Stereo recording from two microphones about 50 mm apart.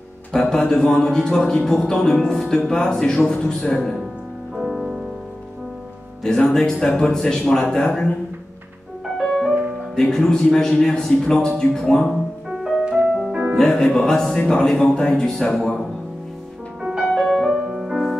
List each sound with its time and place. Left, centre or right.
0.3 s speech: centre
4.6 s music: centre
6.2 s speech: centre
9.9 s speech: centre
12.4 s music: centre
13.3 s music: right
13.6 s speech: centre
16.8 s music: centre
17.2 s music: centre
17.6 s music: centre